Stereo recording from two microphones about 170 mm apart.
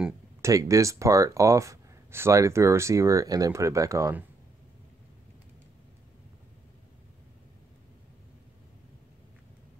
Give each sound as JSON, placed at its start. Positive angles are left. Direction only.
{"t": 0.4, "sound": "speech", "side_deg": -20}